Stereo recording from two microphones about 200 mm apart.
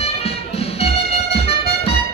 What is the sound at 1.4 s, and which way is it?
Music, 30° left (ahead or behind).